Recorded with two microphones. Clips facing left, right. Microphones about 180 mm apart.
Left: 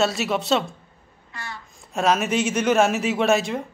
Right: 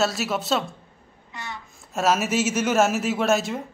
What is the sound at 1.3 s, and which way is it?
Speech, 20° right (ahead or behind).